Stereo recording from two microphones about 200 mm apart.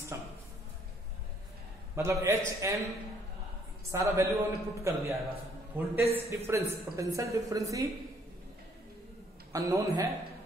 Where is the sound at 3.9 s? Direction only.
15° right (ahead or behind).